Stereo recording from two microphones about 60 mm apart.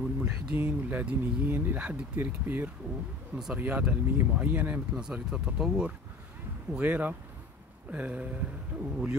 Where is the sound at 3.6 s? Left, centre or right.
Right.